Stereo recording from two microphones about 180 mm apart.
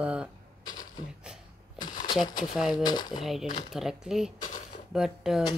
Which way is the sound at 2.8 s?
25° left (ahead or behind).